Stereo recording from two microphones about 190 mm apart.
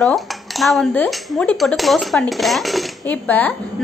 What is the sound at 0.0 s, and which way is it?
Speech, centre (ahead or behind).